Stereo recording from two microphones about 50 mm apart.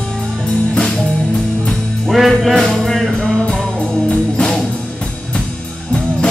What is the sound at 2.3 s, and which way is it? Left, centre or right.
Music, centre.